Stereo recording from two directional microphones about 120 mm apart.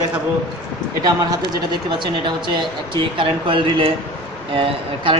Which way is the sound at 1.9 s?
40° right (ahead or behind).